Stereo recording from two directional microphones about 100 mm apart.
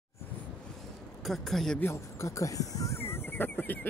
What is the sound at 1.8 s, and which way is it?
Speech, 30° left (ahead or behind).